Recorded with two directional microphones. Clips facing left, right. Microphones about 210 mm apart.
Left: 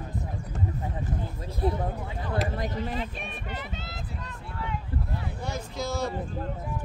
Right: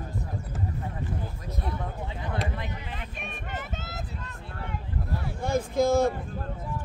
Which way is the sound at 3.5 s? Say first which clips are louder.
Right 1 dB; 50° right (ahead or behind).